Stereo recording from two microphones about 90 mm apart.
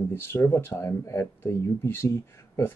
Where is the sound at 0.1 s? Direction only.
25° left (ahead or behind).